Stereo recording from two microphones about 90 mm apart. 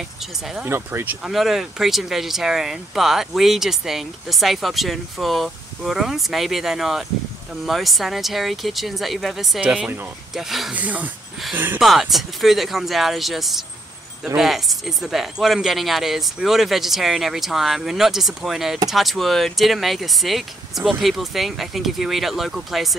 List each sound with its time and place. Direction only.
0.7 s speech: 25° right (ahead or behind)
1.2 s speech: centre (ahead or behind)
10.7 s speech: 15° right (ahead or behind)
11.8 s speech: centre (ahead or behind)